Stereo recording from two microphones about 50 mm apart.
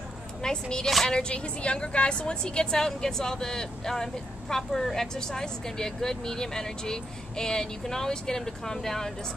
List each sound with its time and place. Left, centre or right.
0.4 s a woman's voice: centre